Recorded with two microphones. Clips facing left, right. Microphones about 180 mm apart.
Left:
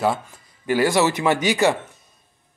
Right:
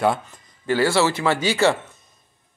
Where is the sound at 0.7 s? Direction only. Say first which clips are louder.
Left 1 dB; 15° left (ahead or behind).